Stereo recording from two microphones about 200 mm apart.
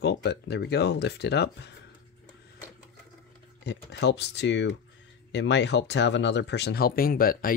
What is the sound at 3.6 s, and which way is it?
Speech, 60° left (ahead or behind).